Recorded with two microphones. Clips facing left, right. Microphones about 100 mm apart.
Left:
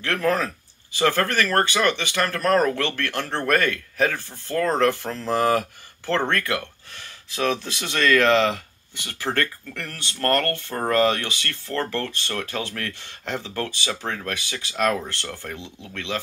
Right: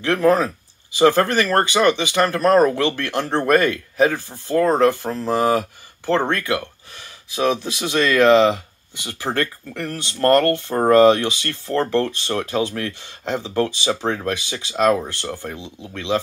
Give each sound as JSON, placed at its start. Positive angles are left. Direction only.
{"t": 0.0, "sound": "speech", "side_deg": -20}